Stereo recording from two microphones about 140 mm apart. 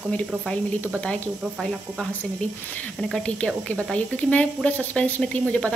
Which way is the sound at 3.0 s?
5° left (ahead or behind).